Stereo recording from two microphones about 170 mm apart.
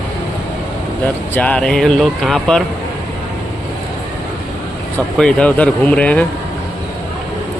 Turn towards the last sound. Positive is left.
turn(degrees=10)  # may be behind; listen again after turning